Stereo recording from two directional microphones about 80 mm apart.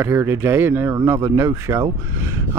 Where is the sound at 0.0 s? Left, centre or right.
Right.